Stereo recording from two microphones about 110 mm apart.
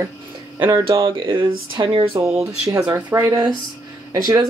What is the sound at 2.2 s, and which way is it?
Speech, 30° right (ahead or behind).